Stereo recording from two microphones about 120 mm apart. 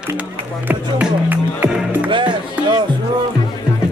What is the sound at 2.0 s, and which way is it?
Music, 40° right (ahead or behind).